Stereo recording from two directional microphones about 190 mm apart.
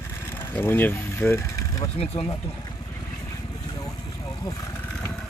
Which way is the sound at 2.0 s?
30° left (ahead or behind).